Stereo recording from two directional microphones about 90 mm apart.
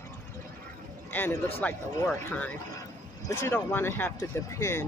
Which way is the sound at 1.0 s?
20° left (ahead or behind).